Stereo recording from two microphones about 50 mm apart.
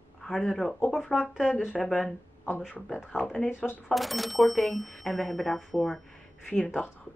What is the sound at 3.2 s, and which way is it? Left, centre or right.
Speech, centre.